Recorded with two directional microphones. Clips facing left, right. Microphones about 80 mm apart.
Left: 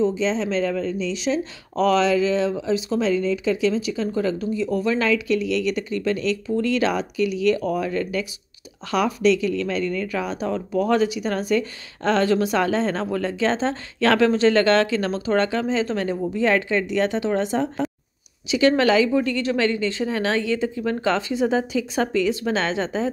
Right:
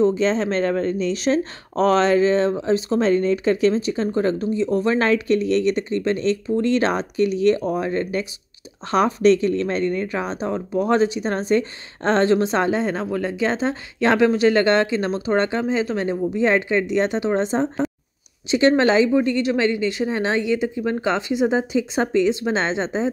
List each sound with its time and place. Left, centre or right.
0.0 s speech: right
12.7 s speech: centre